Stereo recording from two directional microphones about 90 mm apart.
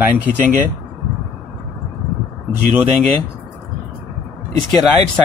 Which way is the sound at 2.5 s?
15° right (ahead or behind).